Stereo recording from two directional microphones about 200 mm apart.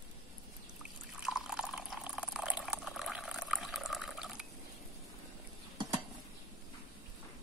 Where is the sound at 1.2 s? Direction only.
Centre (ahead or behind).